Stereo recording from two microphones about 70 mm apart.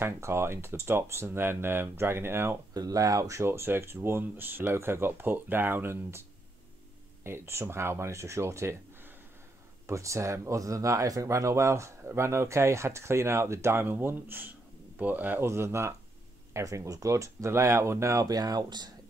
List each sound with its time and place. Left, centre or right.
0.0 s speech: right
2.7 s speech: right
3.4 s speech: right
7.2 s speech: right
15.4 s speech: right